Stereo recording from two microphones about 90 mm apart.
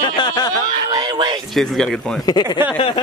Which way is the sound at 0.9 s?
50° right (ahead or behind).